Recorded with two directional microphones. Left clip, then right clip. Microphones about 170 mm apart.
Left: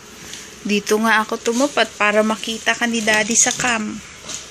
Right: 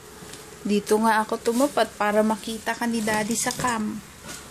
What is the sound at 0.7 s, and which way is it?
A woman's voice, centre (ahead or behind).